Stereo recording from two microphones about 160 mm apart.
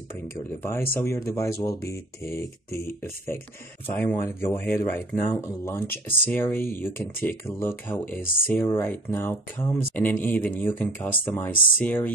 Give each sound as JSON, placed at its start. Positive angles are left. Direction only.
{"t": 0.5, "sound": "speech", "side_deg": 15}